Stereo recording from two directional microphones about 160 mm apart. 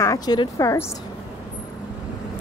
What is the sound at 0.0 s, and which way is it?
Speech, 20° left (ahead or behind).